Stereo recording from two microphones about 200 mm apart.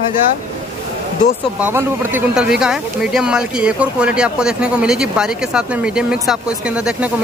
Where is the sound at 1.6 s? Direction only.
10° right (ahead or behind).